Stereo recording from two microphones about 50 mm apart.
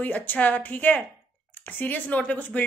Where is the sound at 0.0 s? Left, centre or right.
Left.